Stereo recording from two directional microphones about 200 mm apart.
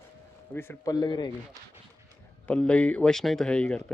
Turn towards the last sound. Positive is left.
turn(degrees=5)  # may be behind; listen again after turning